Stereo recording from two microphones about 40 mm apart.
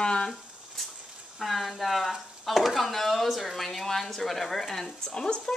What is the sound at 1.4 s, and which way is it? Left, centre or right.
Speech, centre.